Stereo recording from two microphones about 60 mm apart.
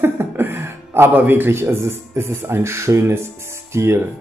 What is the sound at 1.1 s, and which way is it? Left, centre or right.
Speech, right.